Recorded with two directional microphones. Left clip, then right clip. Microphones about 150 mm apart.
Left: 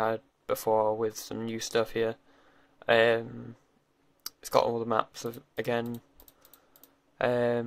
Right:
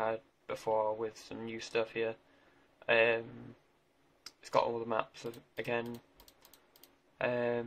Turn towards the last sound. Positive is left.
turn(degrees=40)  # may be behind; listen again after turning